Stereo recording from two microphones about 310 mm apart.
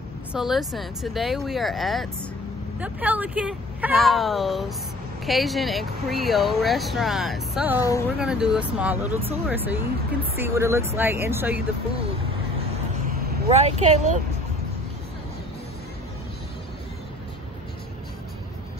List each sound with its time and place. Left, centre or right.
0.3 s speech: centre
13.5 s speech: right